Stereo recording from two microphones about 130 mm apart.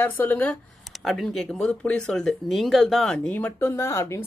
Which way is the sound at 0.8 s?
Centre (ahead or behind).